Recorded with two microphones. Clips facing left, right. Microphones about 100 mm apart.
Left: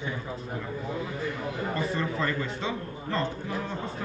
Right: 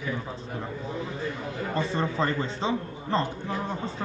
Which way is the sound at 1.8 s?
30° right (ahead or behind).